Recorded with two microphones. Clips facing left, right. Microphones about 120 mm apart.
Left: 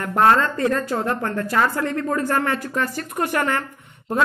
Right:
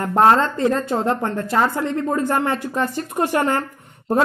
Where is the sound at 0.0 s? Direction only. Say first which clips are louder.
Right 2 dB; 30° right (ahead or behind).